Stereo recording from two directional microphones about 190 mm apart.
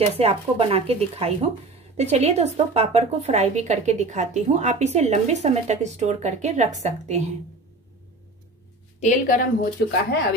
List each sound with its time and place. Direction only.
0.0 s a woman's voice: 30° right (ahead or behind)
9.0 s a woman's voice: 45° left (ahead or behind)